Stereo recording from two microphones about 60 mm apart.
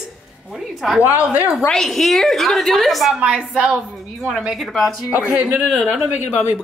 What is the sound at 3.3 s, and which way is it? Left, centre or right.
Speech, centre.